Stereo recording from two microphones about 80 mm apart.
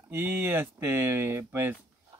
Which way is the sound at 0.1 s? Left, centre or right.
Right.